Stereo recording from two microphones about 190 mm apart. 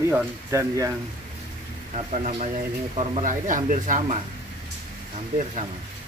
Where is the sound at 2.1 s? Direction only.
40° right (ahead or behind).